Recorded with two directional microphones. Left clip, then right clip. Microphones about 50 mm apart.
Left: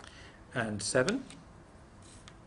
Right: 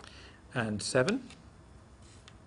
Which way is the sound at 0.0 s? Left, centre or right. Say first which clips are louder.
Even; left.